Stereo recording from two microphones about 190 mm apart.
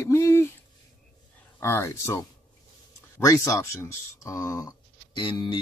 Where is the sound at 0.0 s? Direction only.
15° left (ahead or behind).